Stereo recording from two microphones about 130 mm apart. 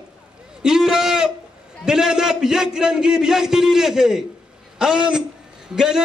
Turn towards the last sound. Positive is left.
turn(degrees=-5)  # may be behind; listen again after turning